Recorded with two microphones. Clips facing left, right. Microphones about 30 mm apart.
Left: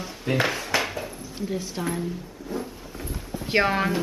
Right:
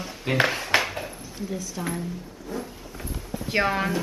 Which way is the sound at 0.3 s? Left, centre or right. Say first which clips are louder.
Right 1 dB; centre.